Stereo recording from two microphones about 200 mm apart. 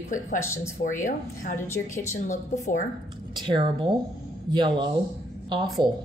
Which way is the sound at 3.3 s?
25° right (ahead or behind).